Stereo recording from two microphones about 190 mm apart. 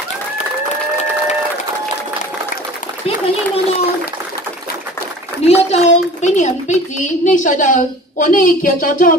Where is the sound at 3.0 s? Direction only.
30° left (ahead or behind).